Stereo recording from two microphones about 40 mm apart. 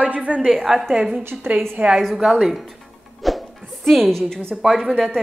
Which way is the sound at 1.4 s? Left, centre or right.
Right.